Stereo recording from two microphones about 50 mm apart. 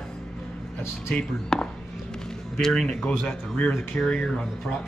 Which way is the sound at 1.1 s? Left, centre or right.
Centre.